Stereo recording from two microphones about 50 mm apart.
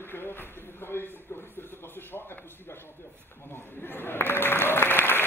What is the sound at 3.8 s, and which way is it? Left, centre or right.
Applause, left.